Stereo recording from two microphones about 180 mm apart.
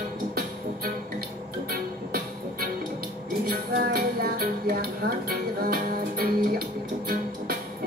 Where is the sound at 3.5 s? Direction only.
55° right (ahead or behind).